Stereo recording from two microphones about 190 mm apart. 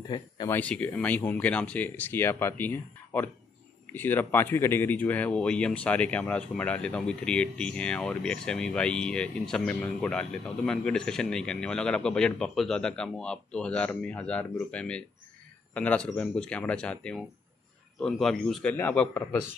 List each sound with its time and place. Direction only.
0.1 s speech: 20° left (ahead or behind)
0.5 s speech: 10° left (ahead or behind)